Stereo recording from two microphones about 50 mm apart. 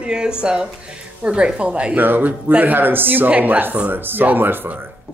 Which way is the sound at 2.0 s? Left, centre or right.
Right.